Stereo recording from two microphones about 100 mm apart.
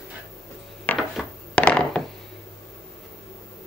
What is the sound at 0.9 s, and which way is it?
Dishes, 15° left (ahead or behind).